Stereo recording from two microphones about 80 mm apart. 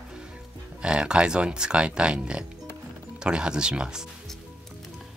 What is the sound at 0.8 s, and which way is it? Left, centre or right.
Speech, centre.